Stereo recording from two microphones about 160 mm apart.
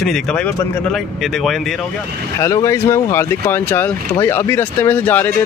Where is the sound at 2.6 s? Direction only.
20° left (ahead or behind).